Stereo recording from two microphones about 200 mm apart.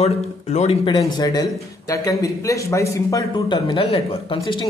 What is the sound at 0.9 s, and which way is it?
Speech, 20° left (ahead or behind).